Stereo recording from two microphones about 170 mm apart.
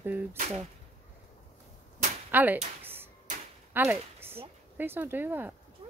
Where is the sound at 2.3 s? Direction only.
10° right (ahead or behind).